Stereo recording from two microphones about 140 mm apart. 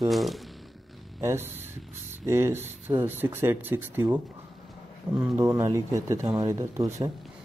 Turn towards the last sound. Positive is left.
turn(degrees=-25)  # may be behind; listen again after turning